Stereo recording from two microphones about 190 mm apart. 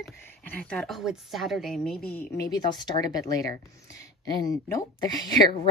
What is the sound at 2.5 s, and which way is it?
A woman's voice, 25° left (ahead or behind).